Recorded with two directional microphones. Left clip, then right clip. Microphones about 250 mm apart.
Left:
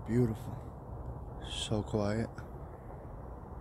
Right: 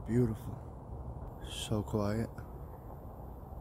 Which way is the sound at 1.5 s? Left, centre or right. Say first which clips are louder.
Left 2 dB; centre.